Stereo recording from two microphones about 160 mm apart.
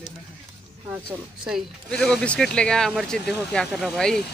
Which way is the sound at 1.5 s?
Centre (ahead or behind).